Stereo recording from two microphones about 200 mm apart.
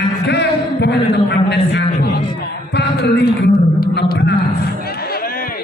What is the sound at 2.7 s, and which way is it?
A man's voice, 55° left (ahead or behind).